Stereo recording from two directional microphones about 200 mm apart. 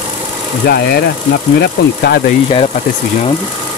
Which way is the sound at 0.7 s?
50° left (ahead or behind).